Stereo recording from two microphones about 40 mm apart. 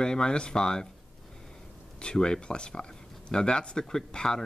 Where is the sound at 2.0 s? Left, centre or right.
Left.